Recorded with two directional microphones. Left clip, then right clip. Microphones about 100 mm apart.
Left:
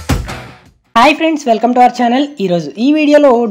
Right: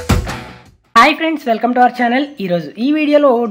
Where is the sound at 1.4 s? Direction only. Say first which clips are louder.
Left 3 dB; 25° left (ahead or behind).